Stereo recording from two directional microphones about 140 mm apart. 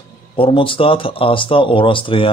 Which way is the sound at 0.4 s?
40° left (ahead or behind).